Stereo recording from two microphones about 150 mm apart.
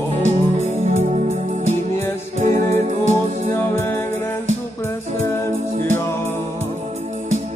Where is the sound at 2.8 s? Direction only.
50° right (ahead or behind).